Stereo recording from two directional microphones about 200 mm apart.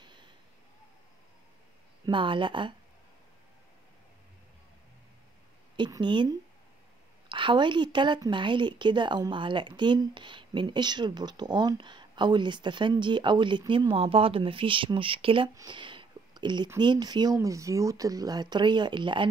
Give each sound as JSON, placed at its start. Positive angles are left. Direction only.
{"t": 0.0, "sound": "a sound", "side_deg": -20}
{"t": 2.0, "sound": "speech", "side_deg": -25}
{"t": 5.8, "sound": "speech", "side_deg": -25}